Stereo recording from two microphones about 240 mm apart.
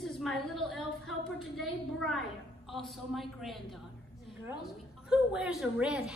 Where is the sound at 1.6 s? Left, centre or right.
Centre.